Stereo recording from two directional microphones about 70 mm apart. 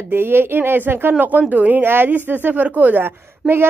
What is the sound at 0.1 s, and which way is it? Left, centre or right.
A woman's voice, right.